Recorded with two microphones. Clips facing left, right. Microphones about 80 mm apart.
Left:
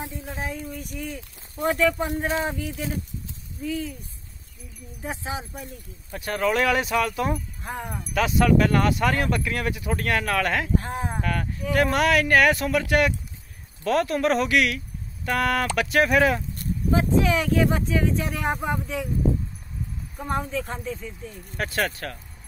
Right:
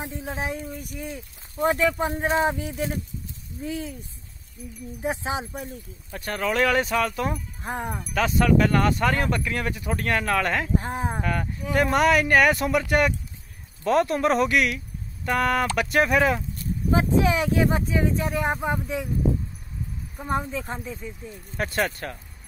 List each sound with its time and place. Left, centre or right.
0.3 s speech: right
3.6 s speech: right
5.0 s speech: right
6.1 s speech: centre
7.6 s speech: right
8.1 s speech: centre
10.7 s speech: centre
11.7 s speech: centre
17.3 s speech: right
17.6 s speech: centre
20.2 s speech: centre
21.5 s speech: centre